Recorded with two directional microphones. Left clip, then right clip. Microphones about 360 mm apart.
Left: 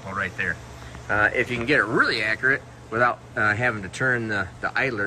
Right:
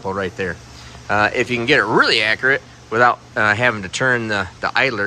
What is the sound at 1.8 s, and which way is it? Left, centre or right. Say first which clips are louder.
Speech: right 5 dB; left.